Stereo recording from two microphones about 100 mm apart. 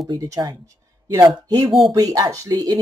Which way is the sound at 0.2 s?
35° right (ahead or behind).